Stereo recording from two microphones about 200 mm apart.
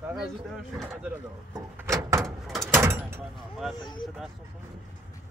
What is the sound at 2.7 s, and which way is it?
Door, 10° right (ahead or behind).